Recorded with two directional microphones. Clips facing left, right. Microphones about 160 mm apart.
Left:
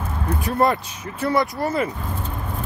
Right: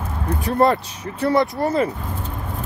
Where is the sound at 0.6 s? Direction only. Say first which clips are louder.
Right 3 dB; 30° right (ahead or behind).